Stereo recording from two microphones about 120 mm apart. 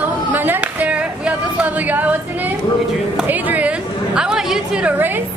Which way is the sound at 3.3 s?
15° right (ahead or behind).